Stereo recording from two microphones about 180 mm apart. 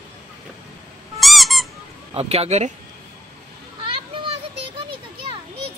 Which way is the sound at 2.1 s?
35° right (ahead or behind).